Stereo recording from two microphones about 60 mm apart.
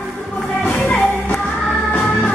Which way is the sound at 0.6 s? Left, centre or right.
Left.